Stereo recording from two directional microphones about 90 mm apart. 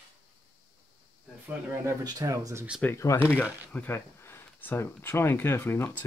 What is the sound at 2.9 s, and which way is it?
Speech, 30° left (ahead or behind).